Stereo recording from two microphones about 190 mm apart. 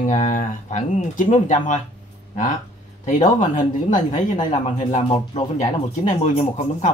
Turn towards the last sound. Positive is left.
turn(degrees=40)  # may be behind; listen again after turning